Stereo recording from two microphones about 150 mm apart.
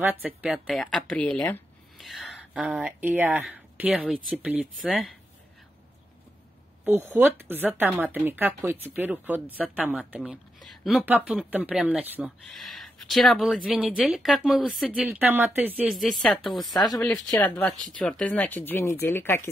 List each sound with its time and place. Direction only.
0.2 s speech: 10° right (ahead or behind)
0.7 s a woman's voice: 5° left (ahead or behind)
6.8 s a woman's voice: 15° right (ahead or behind)
15.2 s speech: 10° right (ahead or behind)
15.9 s a woman's voice: centre (ahead or behind); by 19.5 s 15° left (ahead or behind)